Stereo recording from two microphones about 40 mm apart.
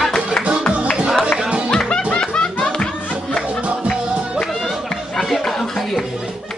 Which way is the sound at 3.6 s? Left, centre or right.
Right.